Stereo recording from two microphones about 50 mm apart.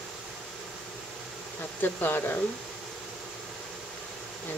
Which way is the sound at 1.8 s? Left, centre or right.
Left.